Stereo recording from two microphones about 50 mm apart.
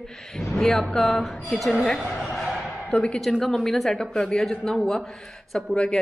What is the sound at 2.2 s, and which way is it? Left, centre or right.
Speech, centre.